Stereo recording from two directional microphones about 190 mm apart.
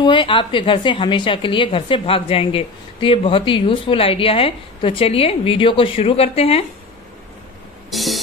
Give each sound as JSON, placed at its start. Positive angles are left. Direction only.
{"t": 0.0, "sound": "a woman's voice", "side_deg": 25}
{"t": 7.9, "sound": "music", "side_deg": 0}